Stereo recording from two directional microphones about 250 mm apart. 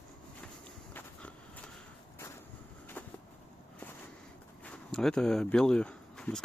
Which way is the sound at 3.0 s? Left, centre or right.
Centre.